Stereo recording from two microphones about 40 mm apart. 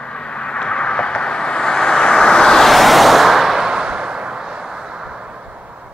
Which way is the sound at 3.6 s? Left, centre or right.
Centre.